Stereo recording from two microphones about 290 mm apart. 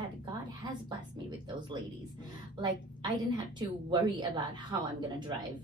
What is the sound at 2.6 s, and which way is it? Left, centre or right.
Speech, centre.